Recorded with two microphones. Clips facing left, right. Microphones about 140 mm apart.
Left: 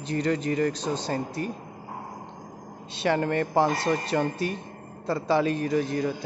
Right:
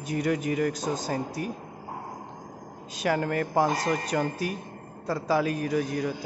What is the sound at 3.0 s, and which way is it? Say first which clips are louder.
A man's voice: left 2 dB; 5° right (ahead or behind).